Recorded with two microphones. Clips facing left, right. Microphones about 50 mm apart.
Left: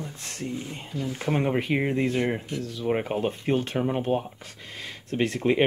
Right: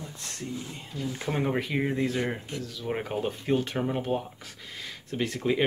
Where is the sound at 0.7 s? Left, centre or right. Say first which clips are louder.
Left 3 dB; left.